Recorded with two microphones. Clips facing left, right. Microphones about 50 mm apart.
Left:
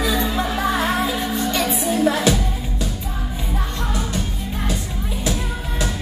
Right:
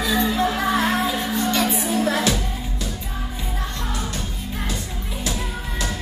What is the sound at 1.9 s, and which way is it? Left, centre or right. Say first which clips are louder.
Music: left 4 dB; left.